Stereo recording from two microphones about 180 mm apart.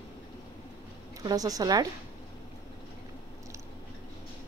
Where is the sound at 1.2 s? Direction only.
20° right (ahead or behind).